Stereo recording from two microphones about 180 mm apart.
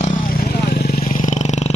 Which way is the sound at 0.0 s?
50° left (ahead or behind).